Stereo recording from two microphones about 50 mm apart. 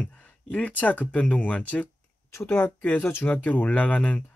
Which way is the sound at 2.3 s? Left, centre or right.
Left.